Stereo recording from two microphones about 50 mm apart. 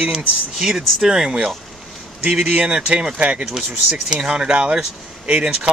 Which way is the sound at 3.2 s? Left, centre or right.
Right.